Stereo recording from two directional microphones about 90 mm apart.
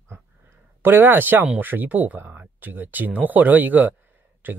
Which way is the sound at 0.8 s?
25° right (ahead or behind).